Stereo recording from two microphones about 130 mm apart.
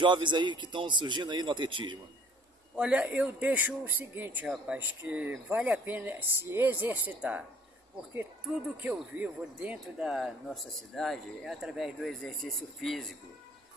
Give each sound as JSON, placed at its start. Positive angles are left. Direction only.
{"t": 0.0, "sound": "a man's voice", "side_deg": -35}
{"t": 2.7, "sound": "speech", "side_deg": -10}
{"t": 8.5, "sound": "speech", "side_deg": -10}